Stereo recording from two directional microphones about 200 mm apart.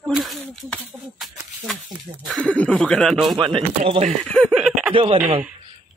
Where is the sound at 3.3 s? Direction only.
25° right (ahead or behind).